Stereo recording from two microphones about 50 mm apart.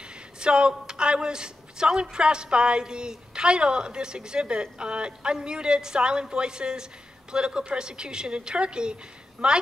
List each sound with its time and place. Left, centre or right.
0.0 s a woman's voice: centre